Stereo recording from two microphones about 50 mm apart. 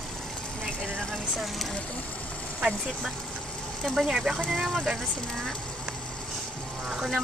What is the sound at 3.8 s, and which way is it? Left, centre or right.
Speech, centre.